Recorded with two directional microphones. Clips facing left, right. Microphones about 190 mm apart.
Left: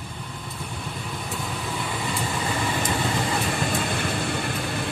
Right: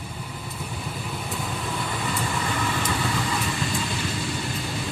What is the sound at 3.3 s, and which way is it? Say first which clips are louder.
Vehicle: left 2 dB; 55° left (ahead or behind).